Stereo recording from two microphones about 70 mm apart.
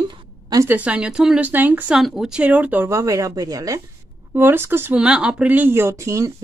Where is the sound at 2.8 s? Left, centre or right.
Right.